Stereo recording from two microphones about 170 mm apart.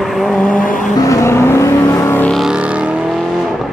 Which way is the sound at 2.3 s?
5° right (ahead or behind).